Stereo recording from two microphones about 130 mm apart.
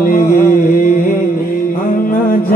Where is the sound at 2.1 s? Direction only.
90° left.